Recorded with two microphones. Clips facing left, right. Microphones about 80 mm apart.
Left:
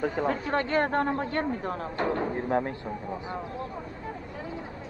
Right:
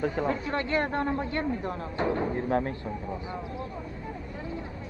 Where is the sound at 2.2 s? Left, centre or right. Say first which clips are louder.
Even; centre.